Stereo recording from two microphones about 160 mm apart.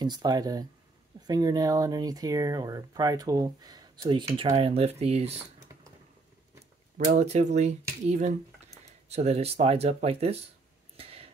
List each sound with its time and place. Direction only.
0.0 s speech: 25° right (ahead or behind)
7.1 s speech: 45° right (ahead or behind)
11.0 s a sound: 35° right (ahead or behind)